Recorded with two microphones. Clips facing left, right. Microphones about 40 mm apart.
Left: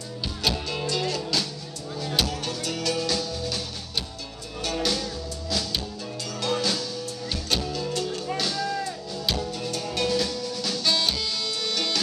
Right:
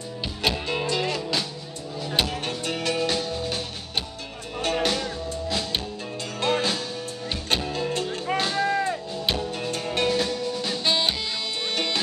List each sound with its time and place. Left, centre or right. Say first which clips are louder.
0.4 s music: right 2 dB; right